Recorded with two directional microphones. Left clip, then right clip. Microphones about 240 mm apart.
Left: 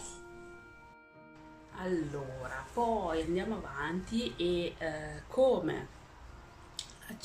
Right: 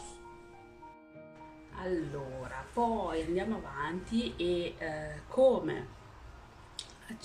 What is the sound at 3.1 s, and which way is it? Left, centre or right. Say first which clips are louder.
A woman's voice: even; centre.